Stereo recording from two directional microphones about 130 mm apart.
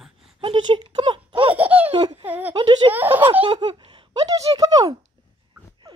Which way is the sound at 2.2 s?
15° right (ahead or behind).